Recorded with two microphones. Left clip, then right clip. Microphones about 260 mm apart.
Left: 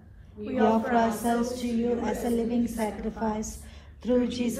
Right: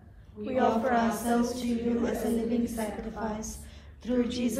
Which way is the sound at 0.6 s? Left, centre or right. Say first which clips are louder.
Left 3 dB; left.